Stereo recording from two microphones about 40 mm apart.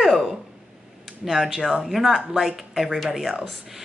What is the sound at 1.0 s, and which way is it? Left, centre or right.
A woman's voice, centre.